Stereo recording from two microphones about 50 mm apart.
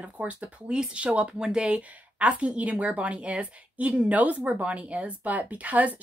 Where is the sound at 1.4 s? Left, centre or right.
Centre.